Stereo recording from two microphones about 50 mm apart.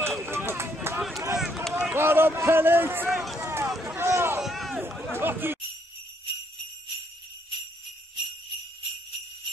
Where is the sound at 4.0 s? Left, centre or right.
Right.